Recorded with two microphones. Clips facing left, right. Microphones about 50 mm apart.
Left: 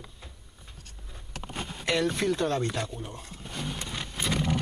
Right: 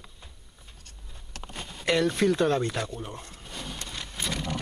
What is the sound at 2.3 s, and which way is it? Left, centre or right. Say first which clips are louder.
Speech: right 4 dB; centre.